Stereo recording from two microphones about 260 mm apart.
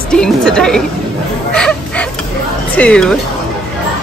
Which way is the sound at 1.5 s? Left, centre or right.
Centre.